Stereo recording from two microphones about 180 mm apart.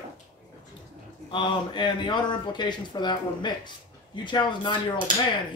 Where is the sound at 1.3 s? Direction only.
25° left (ahead or behind).